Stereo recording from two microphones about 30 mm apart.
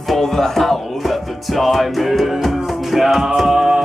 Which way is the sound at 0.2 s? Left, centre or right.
Centre.